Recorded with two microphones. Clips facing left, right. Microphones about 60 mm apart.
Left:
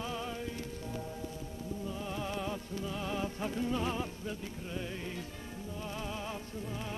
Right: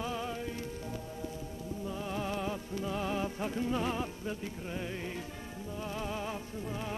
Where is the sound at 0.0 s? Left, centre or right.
Centre.